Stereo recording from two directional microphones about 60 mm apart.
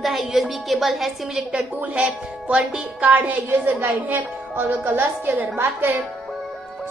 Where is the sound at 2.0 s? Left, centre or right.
Centre; by 5.9 s right.